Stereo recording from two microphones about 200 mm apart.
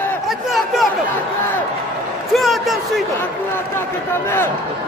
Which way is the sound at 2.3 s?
Centre (ahead or behind).